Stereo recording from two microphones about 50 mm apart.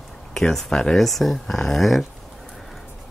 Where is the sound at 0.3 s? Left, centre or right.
Centre.